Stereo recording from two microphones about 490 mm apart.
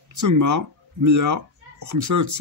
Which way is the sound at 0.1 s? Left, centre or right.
Right.